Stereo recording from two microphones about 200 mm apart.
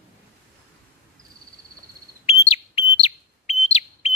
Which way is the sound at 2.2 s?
30° left (ahead or behind).